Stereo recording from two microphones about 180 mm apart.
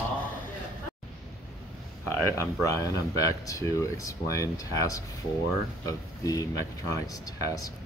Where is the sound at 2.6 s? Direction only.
20° left (ahead or behind).